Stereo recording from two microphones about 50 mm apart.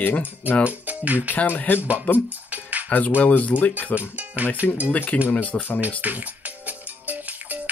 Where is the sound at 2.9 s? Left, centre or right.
Left.